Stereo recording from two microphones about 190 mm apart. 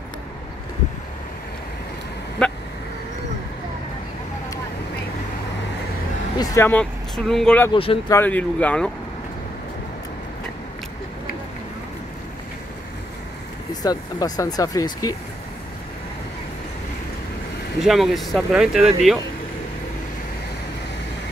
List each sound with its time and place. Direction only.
2.4 s vehicle: 5° left (ahead or behind)
6.3 s speech: 15° left (ahead or behind)
7.7 s speech: 30° left (ahead or behind)
8.1 s speech: 10° left (ahead or behind)
13.8 s speech: 20° left (ahead or behind)
17.8 s speech: centre (ahead or behind)